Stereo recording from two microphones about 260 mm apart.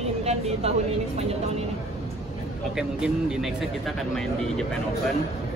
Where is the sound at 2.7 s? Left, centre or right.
Centre.